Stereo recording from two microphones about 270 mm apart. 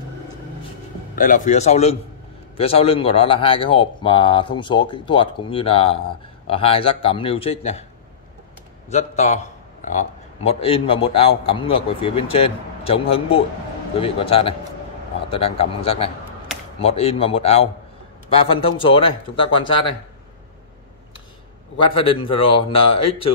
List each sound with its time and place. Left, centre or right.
1.1 s a man's voice: left
8.9 s a man's voice: left
21.7 s a man's voice: centre